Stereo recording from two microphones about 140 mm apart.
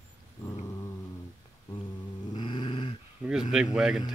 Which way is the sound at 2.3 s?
35° left (ahead or behind).